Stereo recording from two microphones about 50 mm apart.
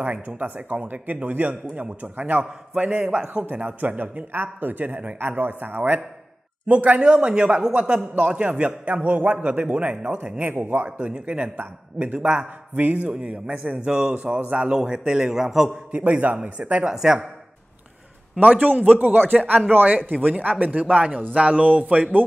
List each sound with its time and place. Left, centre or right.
0.0 s a man's voice: right
3.5 s a man's voice: right
7.0 s a man's voice: centre
10.5 s a man's voice: right
11.0 s a man's voice: right
12.7 s a man's voice: right; by 15.7 s centre
16.1 s a man's voice: right
16.8 s speech: centre
18.4 s a man's voice: right